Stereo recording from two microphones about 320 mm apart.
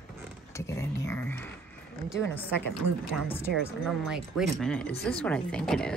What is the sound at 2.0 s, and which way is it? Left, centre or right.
A woman's voice, centre.